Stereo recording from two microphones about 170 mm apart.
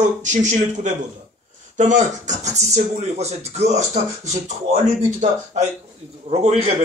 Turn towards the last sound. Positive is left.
turn(degrees=-40)  # may be behind; listen again after turning